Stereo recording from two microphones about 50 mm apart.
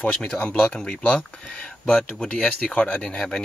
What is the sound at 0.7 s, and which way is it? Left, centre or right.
Speech, centre.